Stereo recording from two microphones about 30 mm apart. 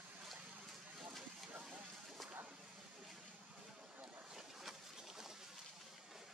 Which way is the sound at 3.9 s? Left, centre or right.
Right.